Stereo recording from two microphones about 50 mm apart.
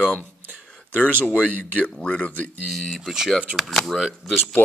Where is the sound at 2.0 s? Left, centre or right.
Left.